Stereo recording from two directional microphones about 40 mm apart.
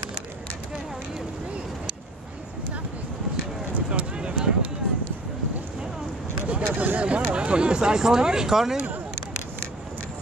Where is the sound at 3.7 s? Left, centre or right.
Right.